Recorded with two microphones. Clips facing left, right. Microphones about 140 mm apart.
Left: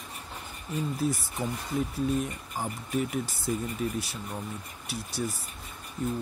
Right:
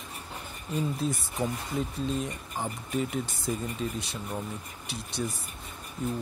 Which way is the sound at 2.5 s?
5° left (ahead or behind).